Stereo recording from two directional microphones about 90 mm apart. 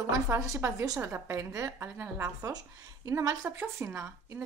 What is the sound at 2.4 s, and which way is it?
A woman's voice, 40° right (ahead or behind).